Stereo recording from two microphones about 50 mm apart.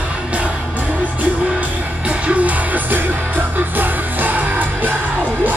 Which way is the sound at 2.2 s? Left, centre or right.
Right.